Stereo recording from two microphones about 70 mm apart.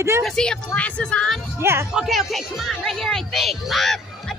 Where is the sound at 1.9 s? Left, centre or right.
Centre.